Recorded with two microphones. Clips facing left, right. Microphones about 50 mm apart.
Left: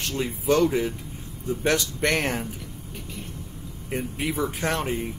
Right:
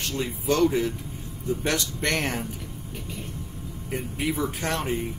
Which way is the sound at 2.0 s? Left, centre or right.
Centre.